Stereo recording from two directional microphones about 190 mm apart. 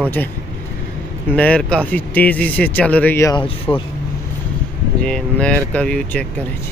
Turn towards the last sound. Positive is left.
turn(degrees=5)  # may be behind; listen again after turning